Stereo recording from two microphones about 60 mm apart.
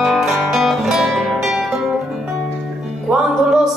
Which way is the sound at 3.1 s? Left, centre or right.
Right.